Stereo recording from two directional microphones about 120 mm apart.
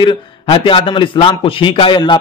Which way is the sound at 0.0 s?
45° left (ahead or behind).